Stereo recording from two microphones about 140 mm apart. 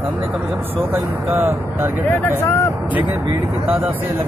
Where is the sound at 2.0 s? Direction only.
20° left (ahead or behind).